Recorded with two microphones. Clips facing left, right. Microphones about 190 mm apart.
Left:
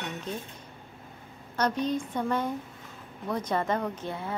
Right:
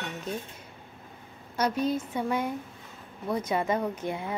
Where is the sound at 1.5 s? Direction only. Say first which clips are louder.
Right 1 dB; 10° right (ahead or behind).